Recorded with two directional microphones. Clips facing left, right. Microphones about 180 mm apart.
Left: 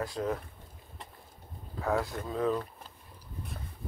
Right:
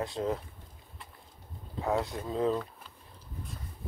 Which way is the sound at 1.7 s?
20° right (ahead or behind).